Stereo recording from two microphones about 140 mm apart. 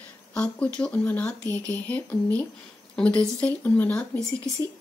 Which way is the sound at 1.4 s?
25° right (ahead or behind).